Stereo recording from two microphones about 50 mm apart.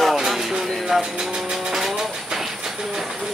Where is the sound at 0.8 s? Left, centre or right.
Centre.